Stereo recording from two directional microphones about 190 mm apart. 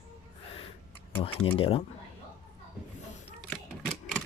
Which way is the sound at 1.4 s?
30° left (ahead or behind).